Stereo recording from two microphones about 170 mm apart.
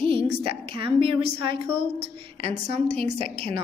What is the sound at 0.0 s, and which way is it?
A woman's voice, 30° right (ahead or behind).